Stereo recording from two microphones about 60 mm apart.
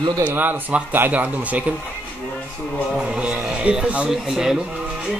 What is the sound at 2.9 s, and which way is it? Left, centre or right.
Speech, centre.